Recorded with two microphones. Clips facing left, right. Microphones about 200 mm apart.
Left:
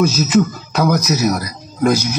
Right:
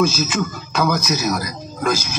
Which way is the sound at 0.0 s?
35° left (ahead or behind).